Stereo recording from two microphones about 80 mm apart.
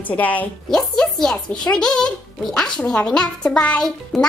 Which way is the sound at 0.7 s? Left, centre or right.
Centre.